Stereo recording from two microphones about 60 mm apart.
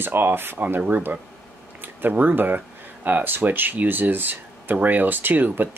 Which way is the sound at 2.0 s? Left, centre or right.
Right.